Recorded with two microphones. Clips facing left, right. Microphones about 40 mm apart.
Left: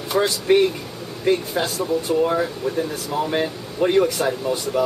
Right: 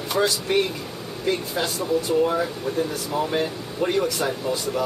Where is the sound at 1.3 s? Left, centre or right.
Left.